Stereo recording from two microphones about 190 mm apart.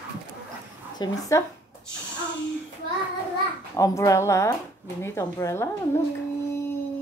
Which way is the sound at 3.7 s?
15° left (ahead or behind).